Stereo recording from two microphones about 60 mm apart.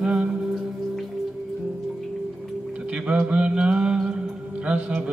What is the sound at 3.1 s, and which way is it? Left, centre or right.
Mantra, centre.